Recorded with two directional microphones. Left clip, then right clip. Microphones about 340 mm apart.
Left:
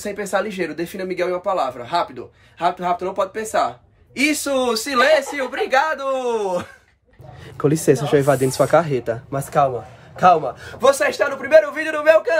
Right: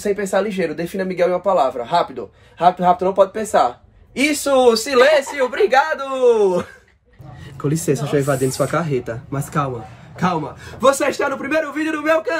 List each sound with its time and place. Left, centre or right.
0.0 s speech: centre
7.6 s a man's voice: centre